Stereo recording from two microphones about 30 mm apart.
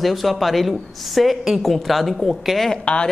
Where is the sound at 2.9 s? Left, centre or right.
Left.